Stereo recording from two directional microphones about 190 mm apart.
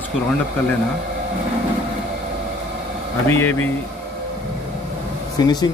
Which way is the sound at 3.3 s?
10° left (ahead or behind).